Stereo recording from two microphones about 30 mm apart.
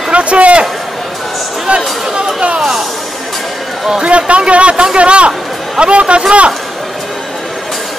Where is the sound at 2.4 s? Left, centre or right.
Right.